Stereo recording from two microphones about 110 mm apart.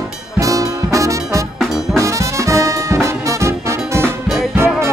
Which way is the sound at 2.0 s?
30° right (ahead or behind).